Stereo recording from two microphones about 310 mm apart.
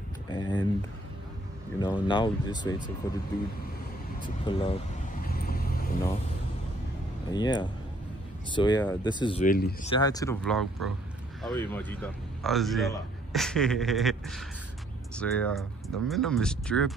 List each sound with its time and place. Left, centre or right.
0.3 s a sound: centre
1.8 s speech: centre
4.5 s vehicle: centre
7.2 s speech: centre
9.9 s a man's voice: centre